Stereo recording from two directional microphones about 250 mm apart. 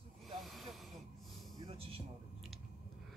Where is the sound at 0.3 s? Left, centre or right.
Centre.